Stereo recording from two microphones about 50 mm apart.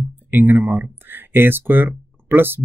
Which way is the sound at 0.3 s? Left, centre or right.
Right.